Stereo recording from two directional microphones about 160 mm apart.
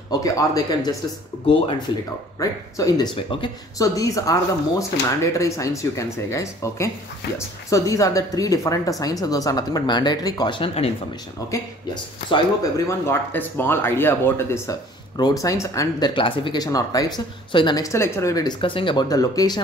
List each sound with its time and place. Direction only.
0.1 s speech: 25° left (ahead or behind)
2.3 s speech: 25° left (ahead or behind)
11.5 s speech: 25° left (ahead or behind)
16.1 s speech: 30° left (ahead or behind)
17.9 s speech: 15° left (ahead or behind)
18.6 s speech: 30° left (ahead or behind)